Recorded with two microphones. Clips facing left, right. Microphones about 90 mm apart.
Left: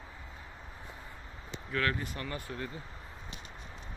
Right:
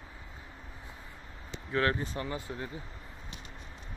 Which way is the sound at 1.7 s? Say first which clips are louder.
Right 3 dB; 25° right (ahead or behind).